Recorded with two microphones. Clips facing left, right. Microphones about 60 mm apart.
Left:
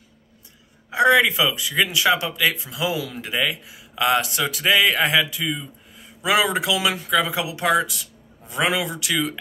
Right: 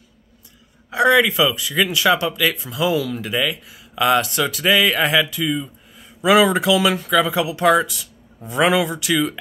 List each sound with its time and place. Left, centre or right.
0.8 s a man's voice: centre